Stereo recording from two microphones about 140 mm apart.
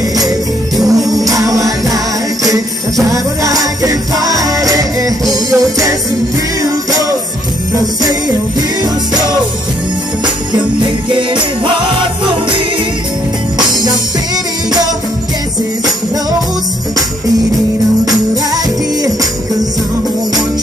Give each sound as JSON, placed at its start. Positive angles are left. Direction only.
{"t": 0.1, "sound": "music", "side_deg": -25}
{"t": 3.1, "sound": "music", "side_deg": -25}
{"t": 8.0, "sound": "music", "side_deg": -30}
{"t": 10.8, "sound": "music", "side_deg": -35}
{"t": 13.8, "sound": "music", "side_deg": -30}
{"t": 18.0, "sound": "music", "side_deg": -25}